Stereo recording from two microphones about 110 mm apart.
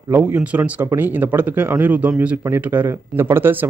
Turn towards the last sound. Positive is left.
turn(degrees=-20)  # may be behind; listen again after turning